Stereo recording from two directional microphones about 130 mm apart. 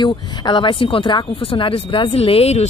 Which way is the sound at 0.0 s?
35° left (ahead or behind).